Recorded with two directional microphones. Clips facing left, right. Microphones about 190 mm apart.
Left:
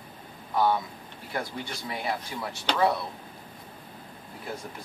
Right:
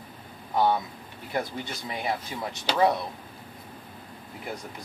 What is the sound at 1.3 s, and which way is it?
Speech, 20° right (ahead or behind).